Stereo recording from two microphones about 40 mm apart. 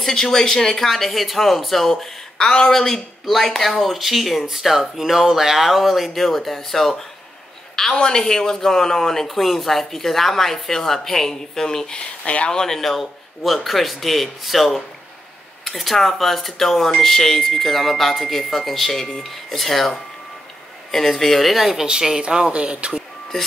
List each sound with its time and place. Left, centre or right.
0.0 s speech: centre
2.7 s speech: centre
3.8 s speech: centre
7.9 s speech: centre
21.8 s speech: centre
22.5 s speech: right